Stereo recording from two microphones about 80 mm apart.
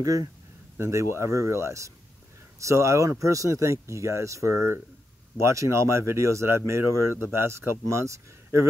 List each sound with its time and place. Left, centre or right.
0.0 s speech: right
0.7 s speech: right